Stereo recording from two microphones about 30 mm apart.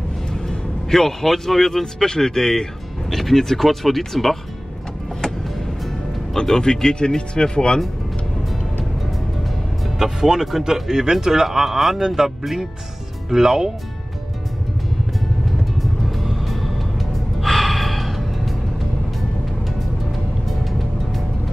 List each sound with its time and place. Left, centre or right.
0.3 s music: centre
0.9 s speech: centre
6.3 s speech: centre
9.9 s speech: centre
13.3 s speech: centre
15.8 s music: centre
17.4 s gasp: centre
20.1 s music: centre